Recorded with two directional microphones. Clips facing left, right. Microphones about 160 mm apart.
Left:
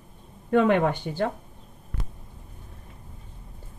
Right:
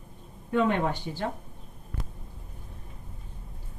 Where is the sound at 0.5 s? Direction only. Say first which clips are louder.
Left 5 dB; 65° left (ahead or behind).